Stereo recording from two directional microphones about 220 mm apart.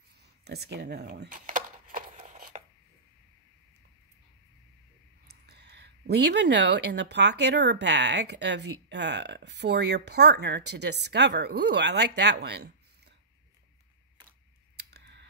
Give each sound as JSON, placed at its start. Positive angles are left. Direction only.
{"t": 0.5, "sound": "a sound", "side_deg": -50}
{"t": 5.5, "sound": "speech", "side_deg": -50}
{"t": 14.9, "sound": "scissors", "side_deg": -50}